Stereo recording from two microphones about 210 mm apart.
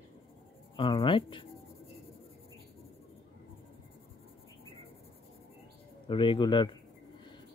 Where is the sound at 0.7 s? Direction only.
25° left (ahead or behind).